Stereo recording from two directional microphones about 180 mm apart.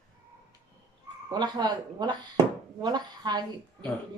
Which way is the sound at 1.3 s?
25° right (ahead or behind).